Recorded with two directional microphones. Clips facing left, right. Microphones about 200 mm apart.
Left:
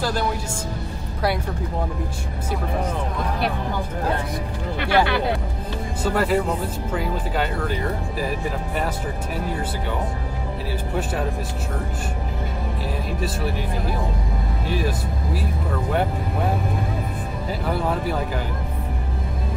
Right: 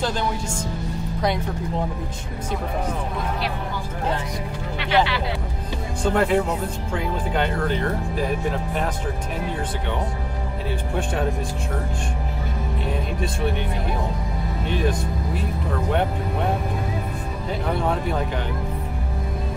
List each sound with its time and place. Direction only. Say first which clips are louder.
4.7 s speech: left 1 dB; 55° left (ahead or behind)
6.0 s speech: right 1 dB; 5° left (ahead or behind)
14.7 s speech: right 1 dB; 5° left (ahead or behind)
17.6 s speech: even; 5° left (ahead or behind)